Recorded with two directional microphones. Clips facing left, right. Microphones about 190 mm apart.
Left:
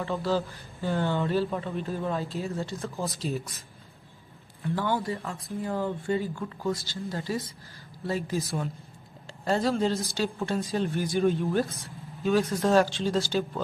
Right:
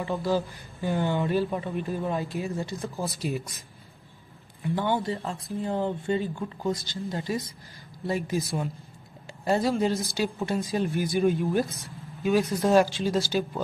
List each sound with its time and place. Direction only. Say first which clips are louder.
0.0 s speech: right 1 dB; 15° right (ahead or behind)
4.6 s speech: right 2 dB; 20° right (ahead or behind)